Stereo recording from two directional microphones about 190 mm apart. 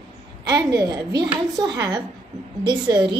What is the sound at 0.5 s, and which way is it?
A woman's voice, 20° right (ahead or behind).